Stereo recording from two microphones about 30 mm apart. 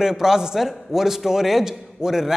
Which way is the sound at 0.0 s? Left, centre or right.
Centre.